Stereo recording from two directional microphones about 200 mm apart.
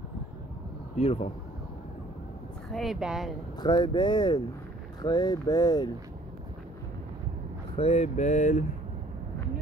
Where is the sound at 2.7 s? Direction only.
Centre (ahead or behind).